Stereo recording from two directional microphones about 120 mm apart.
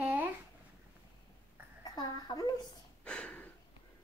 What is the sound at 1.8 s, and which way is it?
Speech, 35° left (ahead or behind).